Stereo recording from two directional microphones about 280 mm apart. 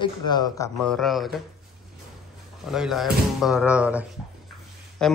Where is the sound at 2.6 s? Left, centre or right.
Centre.